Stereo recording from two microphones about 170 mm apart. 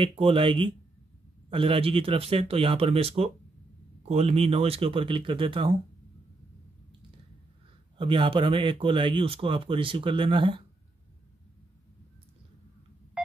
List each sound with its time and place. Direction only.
0.0 s speech: 35° right (ahead or behind)
8.0 s speech: 30° right (ahead or behind)